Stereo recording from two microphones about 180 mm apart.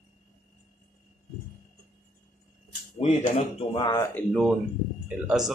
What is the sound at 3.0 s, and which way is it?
Speech, 40° left (ahead or behind).